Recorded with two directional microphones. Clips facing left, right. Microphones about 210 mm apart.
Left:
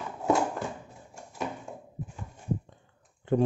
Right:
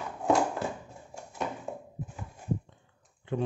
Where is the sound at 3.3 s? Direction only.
45° left (ahead or behind).